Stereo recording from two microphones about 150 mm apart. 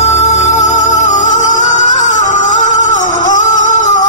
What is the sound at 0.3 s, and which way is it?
Music, 50° left (ahead or behind).